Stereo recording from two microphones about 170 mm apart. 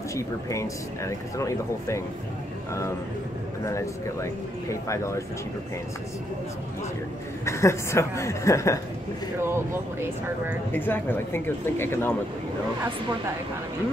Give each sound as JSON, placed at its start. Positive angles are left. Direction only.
{"t": 0.1, "sound": "speech", "side_deg": 15}
{"t": 3.6, "sound": "speech", "side_deg": 15}
{"t": 7.4, "sound": "speech", "side_deg": 15}
{"t": 9.4, "sound": "speech", "side_deg": -15}
{"t": 10.7, "sound": "speech", "side_deg": 10}